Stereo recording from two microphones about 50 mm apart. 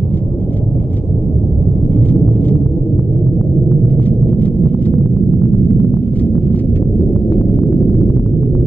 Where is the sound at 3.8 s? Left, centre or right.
Left.